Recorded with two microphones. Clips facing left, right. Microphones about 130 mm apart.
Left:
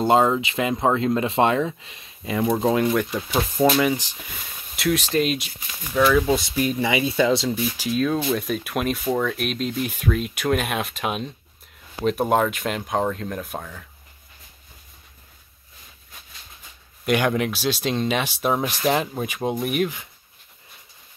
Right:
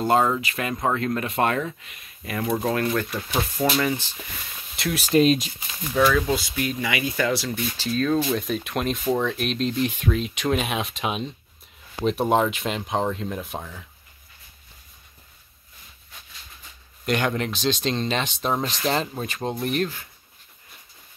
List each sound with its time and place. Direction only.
0.0 s speech: 20° left (ahead or behind)
4.7 s speech: centre (ahead or behind)
5.1 s speech: 30° right (ahead or behind)
6.0 s speech: 20° left (ahead or behind)
7.5 s speech: 10° left (ahead or behind); by 13.8 s 5° right (ahead or behind)
17.0 s speech: 10° left (ahead or behind)